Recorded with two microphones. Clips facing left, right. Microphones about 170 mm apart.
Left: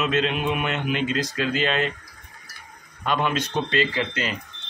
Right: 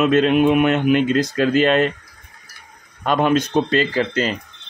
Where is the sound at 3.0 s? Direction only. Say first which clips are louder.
Right 7 dB; 45° right (ahead or behind).